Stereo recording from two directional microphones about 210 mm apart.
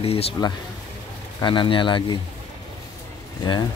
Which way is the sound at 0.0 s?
30° left (ahead or behind).